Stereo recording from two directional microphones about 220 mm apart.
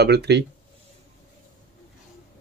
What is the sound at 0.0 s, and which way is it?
Speech, 50° right (ahead or behind).